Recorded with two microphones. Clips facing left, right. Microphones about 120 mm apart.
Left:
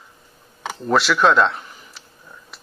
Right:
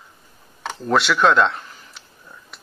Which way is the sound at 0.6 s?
Centre (ahead or behind).